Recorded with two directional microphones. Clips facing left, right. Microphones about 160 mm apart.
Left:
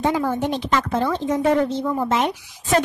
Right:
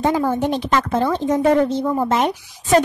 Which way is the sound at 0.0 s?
40° right (ahead or behind).